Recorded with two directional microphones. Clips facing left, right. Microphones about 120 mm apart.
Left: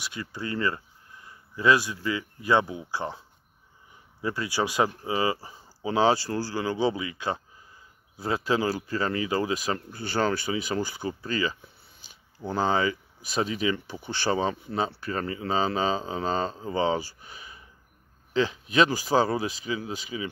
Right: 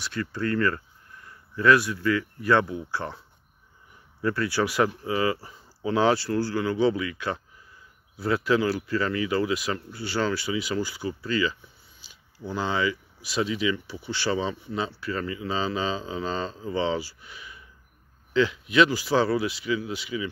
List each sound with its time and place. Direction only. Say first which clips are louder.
0.0 s speech: right 6 dB; 15° left (ahead or behind)
4.2 s speech: right 3 dB; 15° left (ahead or behind); by 20.2 s 40° left (ahead or behind)